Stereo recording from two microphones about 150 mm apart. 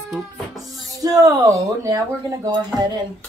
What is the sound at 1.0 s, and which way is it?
Speech, 25° right (ahead or behind).